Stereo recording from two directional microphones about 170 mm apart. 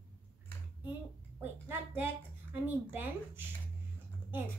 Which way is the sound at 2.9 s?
10° right (ahead or behind).